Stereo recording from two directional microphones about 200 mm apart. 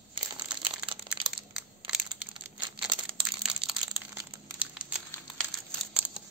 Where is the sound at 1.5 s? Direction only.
Centre (ahead or behind).